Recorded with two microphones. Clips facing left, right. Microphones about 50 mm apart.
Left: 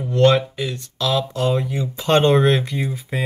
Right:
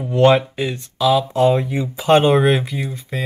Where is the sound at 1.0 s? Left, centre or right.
Centre.